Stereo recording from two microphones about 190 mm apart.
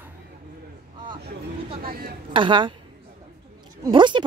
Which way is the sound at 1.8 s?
50° right (ahead or behind).